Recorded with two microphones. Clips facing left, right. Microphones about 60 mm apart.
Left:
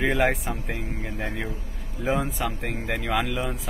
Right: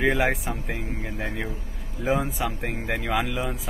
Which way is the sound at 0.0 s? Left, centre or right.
Centre.